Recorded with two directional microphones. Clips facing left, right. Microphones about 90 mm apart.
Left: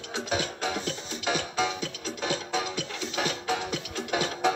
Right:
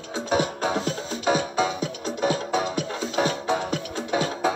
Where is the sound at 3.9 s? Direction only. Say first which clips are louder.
Right 4 dB; 30° right (ahead or behind).